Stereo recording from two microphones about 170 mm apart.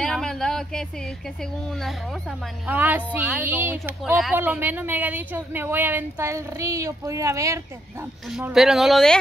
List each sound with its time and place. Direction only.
0.0 s a sound: 5° left (ahead or behind)
2.6 s speech: 10° right (ahead or behind)
8.3 s speech: 5° right (ahead or behind)